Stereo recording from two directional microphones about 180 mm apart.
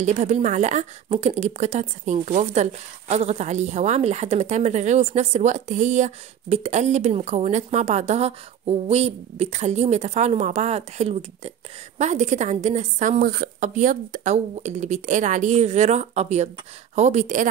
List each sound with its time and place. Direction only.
0.0 s a woman's voice: 40° right (ahead or behind)